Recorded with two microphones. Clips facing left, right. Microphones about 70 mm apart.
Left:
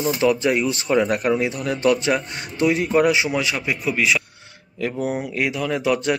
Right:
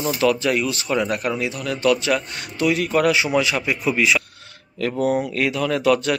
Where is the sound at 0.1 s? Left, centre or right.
Centre.